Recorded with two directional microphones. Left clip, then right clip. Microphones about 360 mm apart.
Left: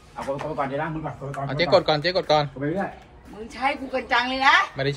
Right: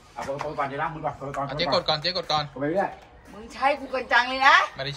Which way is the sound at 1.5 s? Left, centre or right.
Centre.